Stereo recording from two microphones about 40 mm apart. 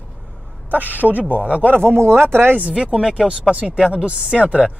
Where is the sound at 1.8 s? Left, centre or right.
Right.